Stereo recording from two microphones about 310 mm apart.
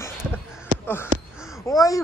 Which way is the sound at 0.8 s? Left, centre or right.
Centre.